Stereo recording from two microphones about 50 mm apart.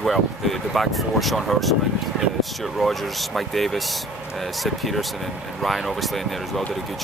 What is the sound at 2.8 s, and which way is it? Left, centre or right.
Speech, centre.